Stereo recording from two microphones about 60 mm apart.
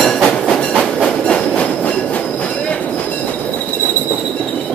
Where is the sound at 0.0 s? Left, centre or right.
Centre.